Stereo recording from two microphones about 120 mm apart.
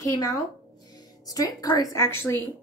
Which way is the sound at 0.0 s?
25° left (ahead or behind).